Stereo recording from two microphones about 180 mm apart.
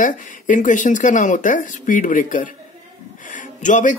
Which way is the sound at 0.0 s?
45° left (ahead or behind).